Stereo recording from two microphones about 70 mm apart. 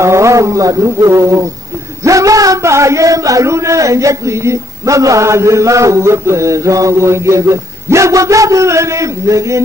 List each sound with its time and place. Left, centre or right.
0.0 s speech: right